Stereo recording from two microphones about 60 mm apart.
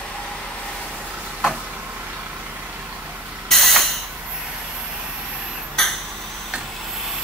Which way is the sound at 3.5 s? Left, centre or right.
Centre.